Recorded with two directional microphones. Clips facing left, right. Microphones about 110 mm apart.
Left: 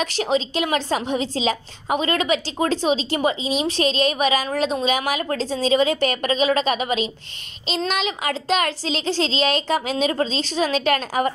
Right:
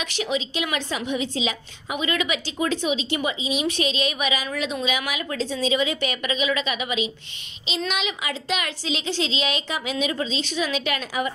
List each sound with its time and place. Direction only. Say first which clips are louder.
0.0 s a woman's voice: left 5 dB; 40° left (ahead or behind)